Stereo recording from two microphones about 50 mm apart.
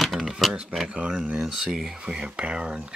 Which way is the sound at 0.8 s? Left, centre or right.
Right.